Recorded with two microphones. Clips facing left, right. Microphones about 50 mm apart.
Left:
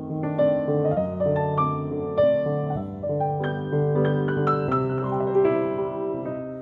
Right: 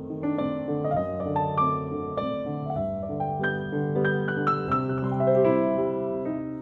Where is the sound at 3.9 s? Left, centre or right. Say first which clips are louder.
Left 1 dB; centre.